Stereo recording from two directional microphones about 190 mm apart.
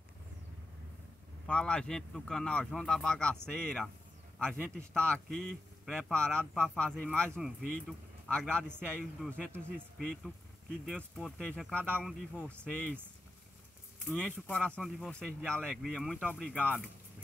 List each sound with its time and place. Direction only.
1.5 s a man's voice: 5° left (ahead or behind)
14.0 s a man's voice: 5° left (ahead or behind)